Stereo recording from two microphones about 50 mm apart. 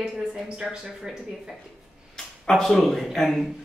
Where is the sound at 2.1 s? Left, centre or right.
Centre.